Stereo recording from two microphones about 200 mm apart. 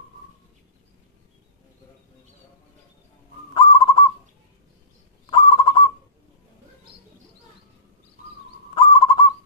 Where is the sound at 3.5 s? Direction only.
25° left (ahead or behind).